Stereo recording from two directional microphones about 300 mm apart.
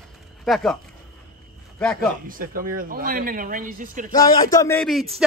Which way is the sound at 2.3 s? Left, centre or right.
Right.